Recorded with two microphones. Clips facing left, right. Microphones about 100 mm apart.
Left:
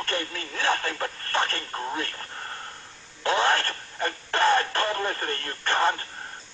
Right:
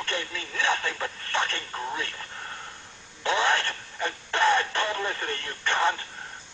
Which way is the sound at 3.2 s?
40° left (ahead or behind).